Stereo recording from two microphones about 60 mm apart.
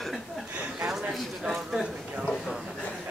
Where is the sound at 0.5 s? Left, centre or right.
Centre.